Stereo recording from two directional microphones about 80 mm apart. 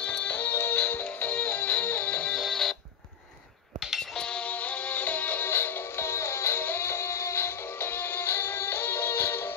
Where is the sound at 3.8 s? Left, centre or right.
Centre.